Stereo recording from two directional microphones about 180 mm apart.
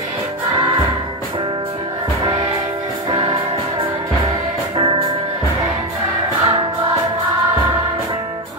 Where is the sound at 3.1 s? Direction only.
25° right (ahead or behind).